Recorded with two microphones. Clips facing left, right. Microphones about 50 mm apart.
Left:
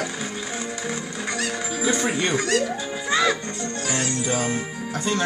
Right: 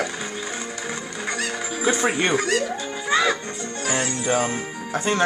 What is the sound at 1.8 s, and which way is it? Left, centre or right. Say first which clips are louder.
Speech: right 2 dB; centre.